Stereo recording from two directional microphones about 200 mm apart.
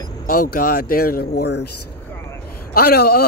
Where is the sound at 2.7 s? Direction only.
50° left (ahead or behind).